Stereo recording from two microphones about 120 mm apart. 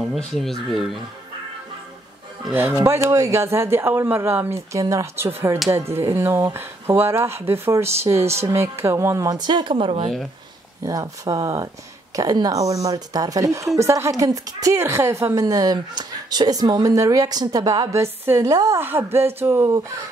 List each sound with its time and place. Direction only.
0.2 s speech: centre (ahead or behind)
2.8 s speech: 20° right (ahead or behind); by 10.0 s 45° right (ahead or behind)
10.8 s speech: 30° right (ahead or behind)
18.8 s speech: 20° right (ahead or behind)